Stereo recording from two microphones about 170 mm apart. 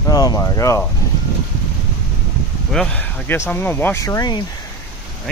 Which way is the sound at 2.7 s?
5° left (ahead or behind).